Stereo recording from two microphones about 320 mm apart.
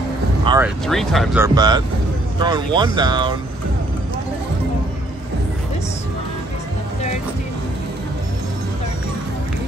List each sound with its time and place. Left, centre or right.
0.5 s vehicle: centre
0.8 s speech: centre